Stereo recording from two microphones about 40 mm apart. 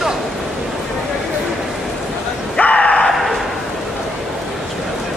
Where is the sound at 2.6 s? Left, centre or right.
Left.